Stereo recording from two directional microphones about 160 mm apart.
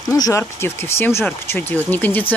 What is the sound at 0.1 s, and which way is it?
Speech, 20° left (ahead or behind).